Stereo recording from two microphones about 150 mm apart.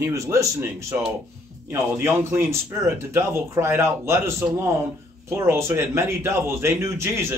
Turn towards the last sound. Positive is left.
turn(degrees=-15)  # may be behind; listen again after turning